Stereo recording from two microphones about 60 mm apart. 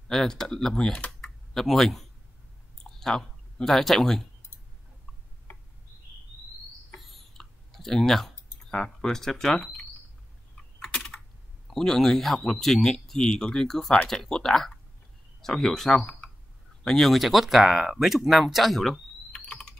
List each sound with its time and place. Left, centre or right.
0.1 s speech: centre
1.2 s tick-tock: centre
2.8 s clicking: centre
7.0 s clicking: centre
10.8 s speech: centre
19.3 s typing: left